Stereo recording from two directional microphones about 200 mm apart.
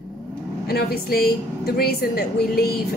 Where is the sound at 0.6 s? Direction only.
50° left (ahead or behind).